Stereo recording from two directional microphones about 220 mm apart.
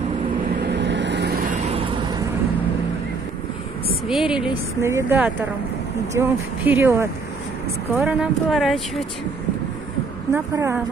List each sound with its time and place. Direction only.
0.6 s vehicle: 50° right (ahead or behind)
1.4 s vehicle: 35° right (ahead or behind)
4.1 s speech: 5° right (ahead or behind)
10.3 s speech: 10° right (ahead or behind)